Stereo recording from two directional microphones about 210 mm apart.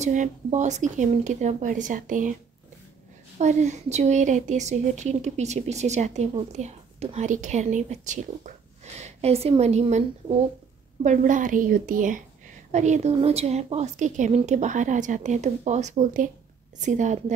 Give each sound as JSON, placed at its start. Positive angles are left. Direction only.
{"t": 0.0, "sound": "a woman's voice", "side_deg": -35}
{"t": 3.3, "sound": "a woman's voice", "side_deg": -35}